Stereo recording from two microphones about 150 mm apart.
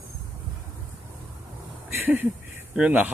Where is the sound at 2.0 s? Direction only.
10° right (ahead or behind).